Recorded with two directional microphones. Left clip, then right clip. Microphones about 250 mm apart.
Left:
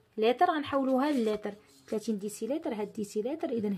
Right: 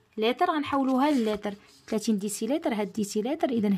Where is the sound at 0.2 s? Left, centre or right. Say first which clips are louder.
Right 1 dB; right.